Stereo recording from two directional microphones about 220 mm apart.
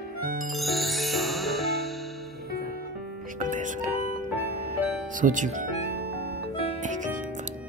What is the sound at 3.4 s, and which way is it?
Music, 35° right (ahead or behind).